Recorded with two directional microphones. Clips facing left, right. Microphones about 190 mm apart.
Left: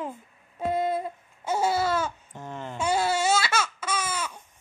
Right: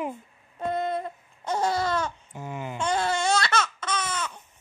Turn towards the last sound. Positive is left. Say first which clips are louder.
# even
turn(degrees=10)  # may be behind; listen again after turning